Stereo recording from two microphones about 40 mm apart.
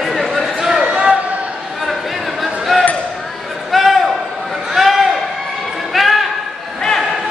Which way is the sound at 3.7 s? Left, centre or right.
Centre.